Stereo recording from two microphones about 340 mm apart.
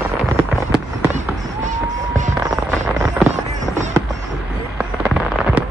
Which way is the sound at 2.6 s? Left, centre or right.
Centre.